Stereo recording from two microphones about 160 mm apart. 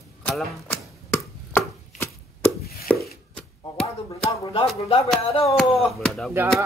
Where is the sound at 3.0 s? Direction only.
5° left (ahead or behind).